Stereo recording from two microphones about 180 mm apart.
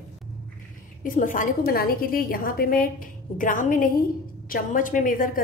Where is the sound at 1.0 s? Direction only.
45° left (ahead or behind).